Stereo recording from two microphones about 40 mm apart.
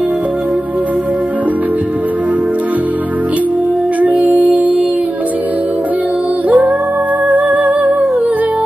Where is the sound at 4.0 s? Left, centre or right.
Right.